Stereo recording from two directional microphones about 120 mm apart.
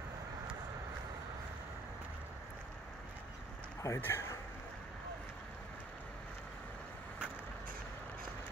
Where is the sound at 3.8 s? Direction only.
20° left (ahead or behind).